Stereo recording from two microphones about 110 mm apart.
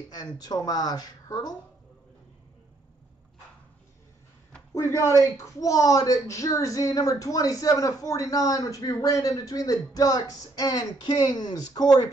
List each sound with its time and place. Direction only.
0.1 s speech: 35° left (ahead or behind)
4.7 s speech: 30° left (ahead or behind)